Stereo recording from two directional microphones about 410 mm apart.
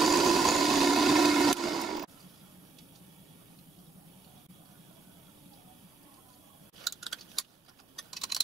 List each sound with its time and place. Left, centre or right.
0.0 s vehicle: centre
6.8 s tick-tock: centre
7.9 s computer keyboard: centre